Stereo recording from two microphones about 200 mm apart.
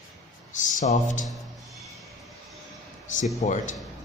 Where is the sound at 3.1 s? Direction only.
40° left (ahead or behind).